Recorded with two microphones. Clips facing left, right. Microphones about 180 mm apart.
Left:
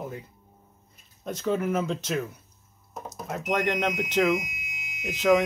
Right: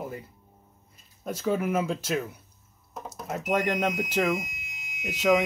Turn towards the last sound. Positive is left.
turn(degrees=-5)  # may be behind; listen again after turning